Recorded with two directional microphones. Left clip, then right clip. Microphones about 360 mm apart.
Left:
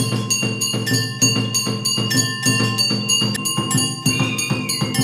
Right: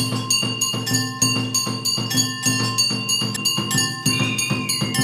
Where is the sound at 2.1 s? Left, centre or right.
Centre.